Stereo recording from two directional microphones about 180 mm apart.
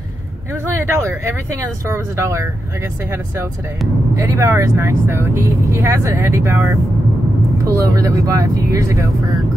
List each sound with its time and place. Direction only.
0.5 s speech: 15° right (ahead or behind)
4.1 s speech: 15° right (ahead or behind)